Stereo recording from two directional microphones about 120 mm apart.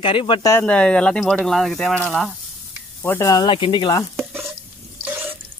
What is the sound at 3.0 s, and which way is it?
Speech, 20° left (ahead or behind).